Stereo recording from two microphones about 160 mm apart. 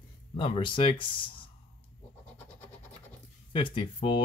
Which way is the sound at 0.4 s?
35° left (ahead or behind).